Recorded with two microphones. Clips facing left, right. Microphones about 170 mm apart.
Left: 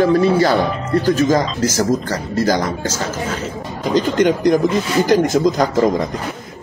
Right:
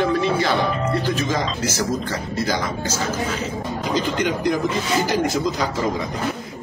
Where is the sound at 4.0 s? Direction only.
45° left (ahead or behind).